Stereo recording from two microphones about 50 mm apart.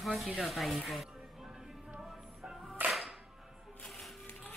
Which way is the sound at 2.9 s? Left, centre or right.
Centre.